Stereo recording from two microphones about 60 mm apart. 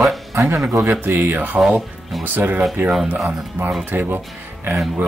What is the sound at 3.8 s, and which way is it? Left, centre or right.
Speech, right.